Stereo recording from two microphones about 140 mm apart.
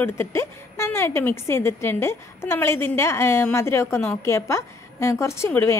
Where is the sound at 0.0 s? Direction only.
15° left (ahead or behind).